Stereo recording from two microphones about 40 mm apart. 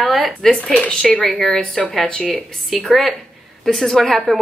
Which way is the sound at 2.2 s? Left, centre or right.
Centre.